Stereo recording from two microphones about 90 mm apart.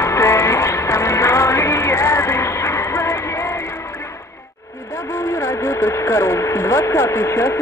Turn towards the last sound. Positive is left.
turn(degrees=30)  # may be behind; listen again after turning